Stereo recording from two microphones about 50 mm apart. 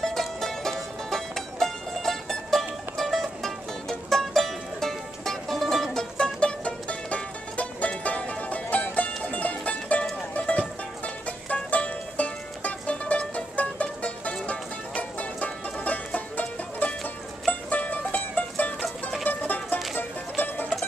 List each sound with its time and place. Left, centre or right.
0.0 s music: centre
5.9 s music: centre; by 20.6 s left